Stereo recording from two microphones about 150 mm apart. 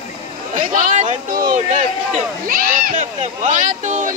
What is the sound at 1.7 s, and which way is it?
Speech, 45° right (ahead or behind).